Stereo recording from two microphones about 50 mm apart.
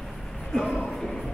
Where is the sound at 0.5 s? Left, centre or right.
Centre.